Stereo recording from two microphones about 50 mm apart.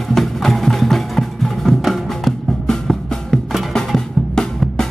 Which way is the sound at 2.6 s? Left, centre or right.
Centre.